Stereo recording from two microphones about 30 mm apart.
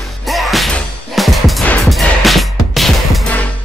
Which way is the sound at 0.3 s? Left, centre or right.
Centre.